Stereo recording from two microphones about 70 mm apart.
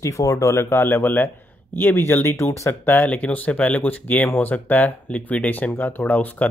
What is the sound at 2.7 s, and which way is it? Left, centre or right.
Speech, left.